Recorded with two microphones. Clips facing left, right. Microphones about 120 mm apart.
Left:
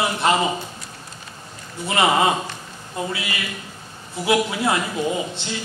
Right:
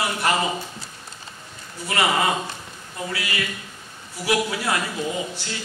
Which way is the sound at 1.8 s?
20° left (ahead or behind).